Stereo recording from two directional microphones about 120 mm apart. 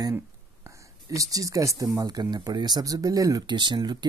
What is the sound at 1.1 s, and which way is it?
Speech, 30° right (ahead or behind).